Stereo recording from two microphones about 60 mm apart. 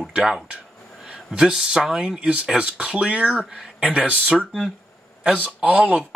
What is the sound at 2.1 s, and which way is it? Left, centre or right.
A man's voice, centre.